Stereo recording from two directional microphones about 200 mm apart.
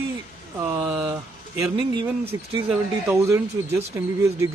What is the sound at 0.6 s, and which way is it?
Speech, 10° right (ahead or behind).